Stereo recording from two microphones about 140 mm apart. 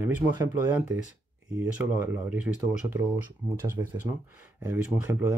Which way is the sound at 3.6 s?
20° right (ahead or behind).